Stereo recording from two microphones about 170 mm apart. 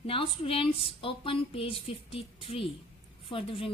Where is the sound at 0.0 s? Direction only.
35° left (ahead or behind).